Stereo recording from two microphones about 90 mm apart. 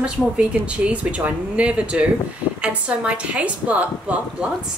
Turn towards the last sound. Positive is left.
turn(degrees=-15)  # may be behind; listen again after turning